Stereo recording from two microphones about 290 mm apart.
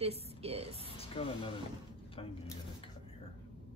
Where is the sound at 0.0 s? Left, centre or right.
Right.